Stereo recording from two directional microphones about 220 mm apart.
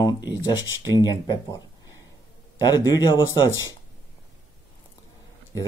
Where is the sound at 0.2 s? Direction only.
10° right (ahead or behind).